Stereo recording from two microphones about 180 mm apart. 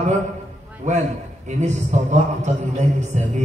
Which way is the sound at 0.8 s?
40° right (ahead or behind).